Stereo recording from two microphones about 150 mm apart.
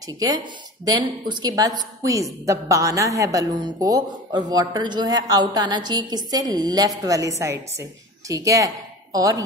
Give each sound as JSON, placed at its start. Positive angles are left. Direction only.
{"t": 0.0, "sound": "a woman's voice", "side_deg": -25}